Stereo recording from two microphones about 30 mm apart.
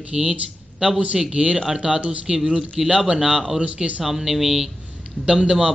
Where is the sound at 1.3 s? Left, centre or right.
Right.